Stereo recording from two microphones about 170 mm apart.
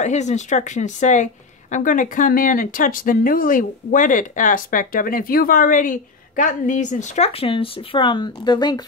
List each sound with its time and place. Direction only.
0.0 s a woman's voice: 45° left (ahead or behind); by 8.8 s 25° left (ahead or behind)